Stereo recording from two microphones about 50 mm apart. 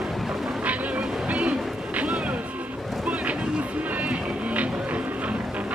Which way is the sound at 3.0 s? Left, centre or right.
Right.